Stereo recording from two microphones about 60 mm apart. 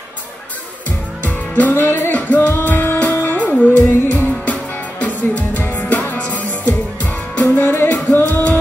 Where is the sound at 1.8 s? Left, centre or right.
Left.